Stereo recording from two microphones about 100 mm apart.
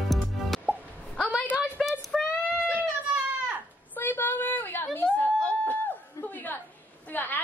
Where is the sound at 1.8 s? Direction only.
Centre (ahead or behind).